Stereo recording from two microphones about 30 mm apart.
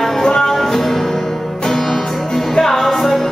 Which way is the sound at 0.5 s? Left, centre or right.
Centre.